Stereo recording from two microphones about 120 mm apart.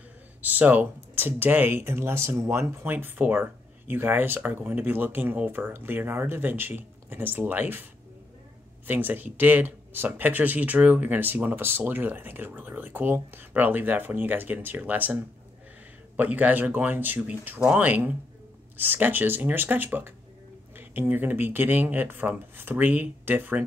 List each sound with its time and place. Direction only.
0.4 s speech: 15° right (ahead or behind)
8.8 s speech: 15° right (ahead or behind)
16.2 s speech: 15° right (ahead or behind)